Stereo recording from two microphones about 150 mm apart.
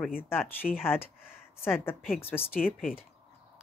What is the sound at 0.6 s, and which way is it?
Speech, 55° left (ahead or behind).